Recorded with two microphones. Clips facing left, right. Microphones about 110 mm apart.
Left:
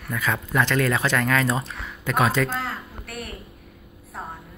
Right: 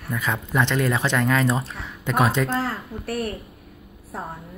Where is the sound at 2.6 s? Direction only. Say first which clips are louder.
Right 4 dB; 40° right (ahead or behind).